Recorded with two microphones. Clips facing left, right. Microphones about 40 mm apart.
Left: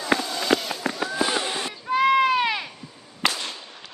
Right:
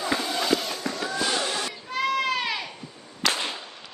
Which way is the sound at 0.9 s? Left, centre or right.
Centre.